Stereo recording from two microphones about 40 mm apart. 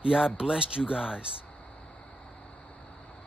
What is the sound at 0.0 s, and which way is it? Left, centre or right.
Speech, centre.